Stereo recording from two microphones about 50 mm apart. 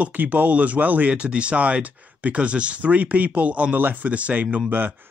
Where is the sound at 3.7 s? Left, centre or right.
Right.